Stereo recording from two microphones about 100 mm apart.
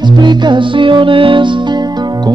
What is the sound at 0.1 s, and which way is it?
Music, 50° right (ahead or behind).